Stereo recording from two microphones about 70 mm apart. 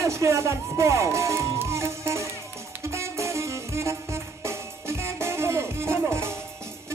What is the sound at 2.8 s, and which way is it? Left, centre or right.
Music, right.